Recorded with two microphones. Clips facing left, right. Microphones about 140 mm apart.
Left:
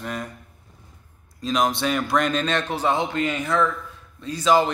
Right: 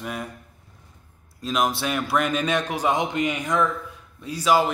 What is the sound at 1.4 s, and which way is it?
A man's voice, 5° right (ahead or behind).